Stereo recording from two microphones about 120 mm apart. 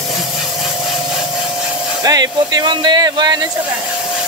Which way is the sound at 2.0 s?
35° right (ahead or behind).